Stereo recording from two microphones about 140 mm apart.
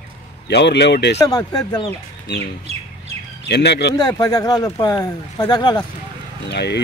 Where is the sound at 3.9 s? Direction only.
30° left (ahead or behind).